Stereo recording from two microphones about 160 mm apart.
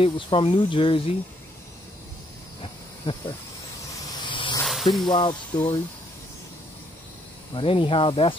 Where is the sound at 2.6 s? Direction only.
30° left (ahead or behind).